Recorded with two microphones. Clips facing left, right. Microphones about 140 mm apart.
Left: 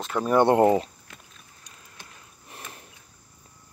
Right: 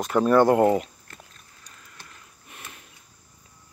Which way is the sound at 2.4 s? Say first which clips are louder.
Left 2 dB; 35° left (ahead or behind).